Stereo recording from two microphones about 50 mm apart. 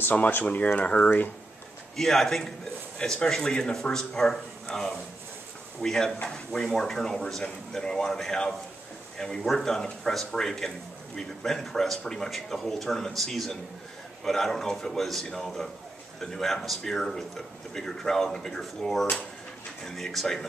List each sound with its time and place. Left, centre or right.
0.1 s speech: left
2.0 s speech: centre